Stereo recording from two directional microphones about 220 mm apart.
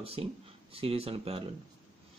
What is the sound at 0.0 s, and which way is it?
Speech, 25° right (ahead or behind).